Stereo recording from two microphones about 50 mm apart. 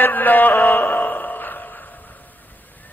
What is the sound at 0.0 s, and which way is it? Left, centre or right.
Music, left.